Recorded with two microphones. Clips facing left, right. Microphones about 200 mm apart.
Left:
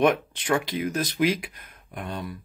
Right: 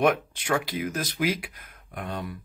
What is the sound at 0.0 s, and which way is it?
Speech, 10° right (ahead or behind).